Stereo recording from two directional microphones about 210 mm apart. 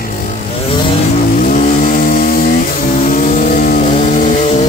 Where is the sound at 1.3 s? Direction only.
40° left (ahead or behind).